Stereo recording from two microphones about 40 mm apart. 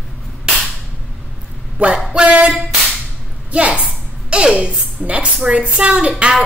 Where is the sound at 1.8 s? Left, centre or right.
Right.